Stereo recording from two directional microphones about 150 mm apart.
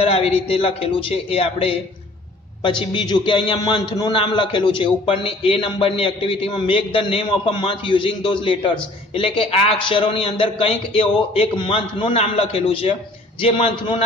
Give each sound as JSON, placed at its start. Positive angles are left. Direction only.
{"t": 0.0, "sound": "a man's voice", "side_deg": 40}